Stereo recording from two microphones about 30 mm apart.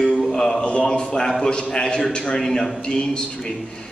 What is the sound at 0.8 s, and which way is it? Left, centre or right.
A man's voice, left.